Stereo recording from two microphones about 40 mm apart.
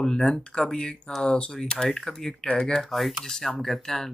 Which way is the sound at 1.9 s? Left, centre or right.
Centre.